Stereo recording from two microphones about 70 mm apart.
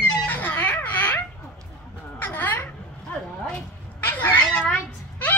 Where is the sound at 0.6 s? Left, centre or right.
Left.